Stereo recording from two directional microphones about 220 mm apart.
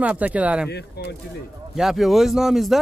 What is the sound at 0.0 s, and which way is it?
Speech, 5° right (ahead or behind).